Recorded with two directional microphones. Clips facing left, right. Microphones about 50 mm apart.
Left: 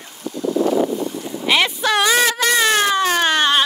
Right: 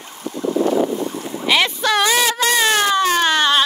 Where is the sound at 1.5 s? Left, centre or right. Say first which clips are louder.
Even; centre.